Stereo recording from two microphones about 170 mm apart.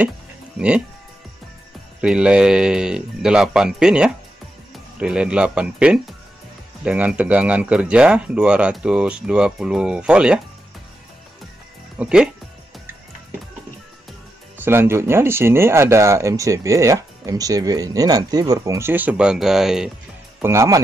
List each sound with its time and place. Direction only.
0.6 s speech: 5° right (ahead or behind)
2.0 s speech: 5° right (ahead or behind)
12.0 s speech: 5° right (ahead or behind)
14.6 s speech: 15° right (ahead or behind)
20.4 s speech: 15° right (ahead or behind)